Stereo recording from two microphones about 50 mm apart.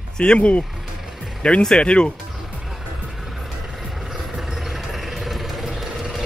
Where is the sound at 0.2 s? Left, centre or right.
Left.